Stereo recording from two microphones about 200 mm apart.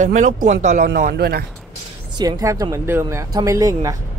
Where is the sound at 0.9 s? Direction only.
50° right (ahead or behind).